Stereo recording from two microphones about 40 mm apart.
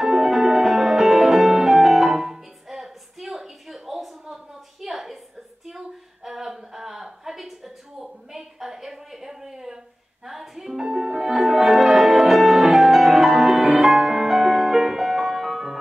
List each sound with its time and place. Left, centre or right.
0.0 s music: centre
5.7 s a sound: centre
10.2 s music: centre
10.8 s music: centre
11.1 s music: centre